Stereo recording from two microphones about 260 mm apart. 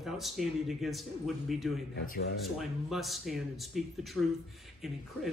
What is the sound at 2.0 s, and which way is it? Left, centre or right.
Speech, left.